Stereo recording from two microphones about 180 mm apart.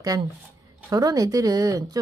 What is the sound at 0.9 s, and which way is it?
Speech, 20° right (ahead or behind).